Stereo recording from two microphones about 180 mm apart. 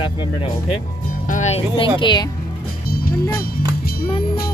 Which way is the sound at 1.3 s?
40° left (ahead or behind).